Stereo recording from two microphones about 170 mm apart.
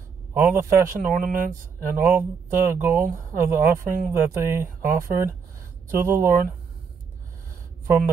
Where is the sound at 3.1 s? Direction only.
15° right (ahead or behind).